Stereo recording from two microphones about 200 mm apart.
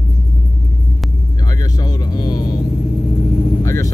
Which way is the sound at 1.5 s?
20° left (ahead or behind).